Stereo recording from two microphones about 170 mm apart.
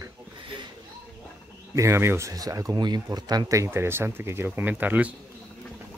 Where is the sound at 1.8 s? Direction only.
15° right (ahead or behind).